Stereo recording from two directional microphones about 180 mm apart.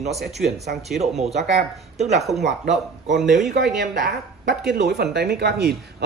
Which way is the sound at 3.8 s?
65° right (ahead or behind).